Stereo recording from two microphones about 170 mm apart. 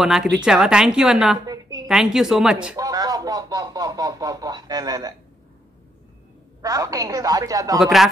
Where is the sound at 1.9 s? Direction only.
Centre (ahead or behind).